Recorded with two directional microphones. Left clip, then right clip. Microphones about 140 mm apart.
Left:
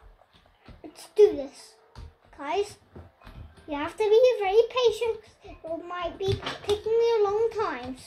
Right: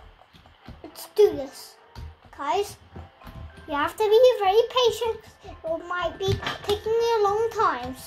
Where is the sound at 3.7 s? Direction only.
5° left (ahead or behind).